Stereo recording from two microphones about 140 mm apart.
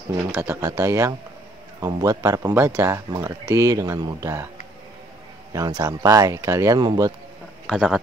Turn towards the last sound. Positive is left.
turn(degrees=-5)  # may be behind; listen again after turning